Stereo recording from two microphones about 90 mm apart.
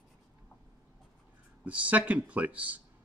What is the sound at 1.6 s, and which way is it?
Speech, 15° right (ahead or behind).